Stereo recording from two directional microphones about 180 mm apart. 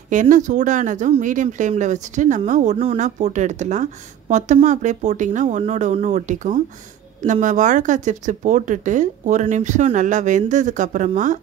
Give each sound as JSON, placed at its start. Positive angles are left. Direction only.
{"t": 0.1, "sound": "speech", "side_deg": -45}